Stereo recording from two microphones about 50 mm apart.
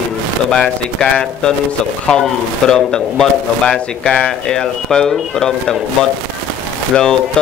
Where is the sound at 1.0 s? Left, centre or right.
Centre.